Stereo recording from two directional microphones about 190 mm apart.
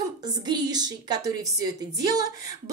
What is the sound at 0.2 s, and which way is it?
A woman's voice, 20° right (ahead or behind).